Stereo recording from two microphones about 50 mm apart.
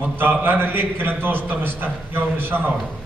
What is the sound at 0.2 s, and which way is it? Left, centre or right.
A man's voice, right.